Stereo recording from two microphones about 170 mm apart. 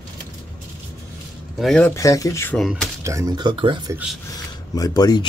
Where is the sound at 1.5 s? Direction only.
5° left (ahead or behind).